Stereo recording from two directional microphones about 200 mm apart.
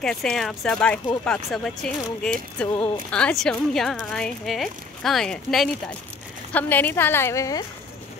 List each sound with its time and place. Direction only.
0.0 s a woman's voice: 5° left (ahead or behind)